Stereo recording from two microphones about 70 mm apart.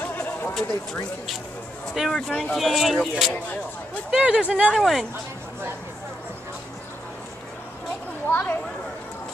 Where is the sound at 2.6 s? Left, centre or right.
Centre.